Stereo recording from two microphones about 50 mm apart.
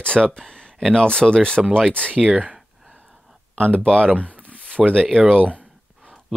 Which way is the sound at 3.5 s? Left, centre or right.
Left.